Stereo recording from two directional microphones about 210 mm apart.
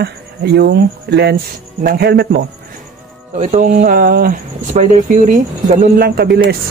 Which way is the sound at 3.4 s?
35° right (ahead or behind).